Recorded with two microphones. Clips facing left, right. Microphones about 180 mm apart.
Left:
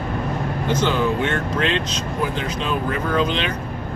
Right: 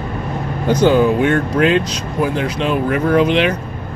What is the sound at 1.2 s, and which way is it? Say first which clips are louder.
Speech: right 7 dB; 25° left (ahead or behind).